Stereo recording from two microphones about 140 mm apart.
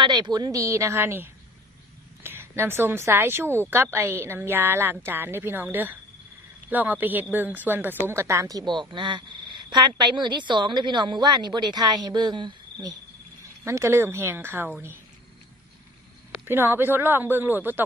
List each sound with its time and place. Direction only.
0.0 s a woman's voice: 30° right (ahead or behind)
13.7 s speech: 15° right (ahead or behind)
16.4 s speech: 15° right (ahead or behind)